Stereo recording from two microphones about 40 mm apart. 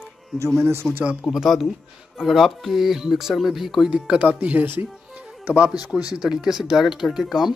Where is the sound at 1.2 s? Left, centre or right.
Centre.